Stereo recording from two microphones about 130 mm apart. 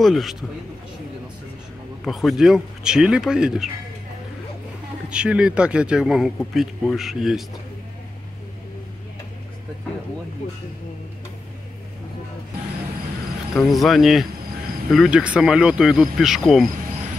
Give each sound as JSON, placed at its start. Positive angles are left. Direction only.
{"t": 0.0, "sound": "speech", "side_deg": 0}
{"t": 2.0, "sound": "speech", "side_deg": 0}
{"t": 5.1, "sound": "speech", "side_deg": -10}
{"t": 10.4, "sound": "speech", "side_deg": 85}
{"t": 13.6, "sound": "speech", "side_deg": 0}